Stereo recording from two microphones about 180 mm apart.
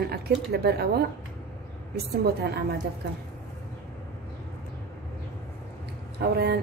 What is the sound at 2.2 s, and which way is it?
Speech, 65° right (ahead or behind).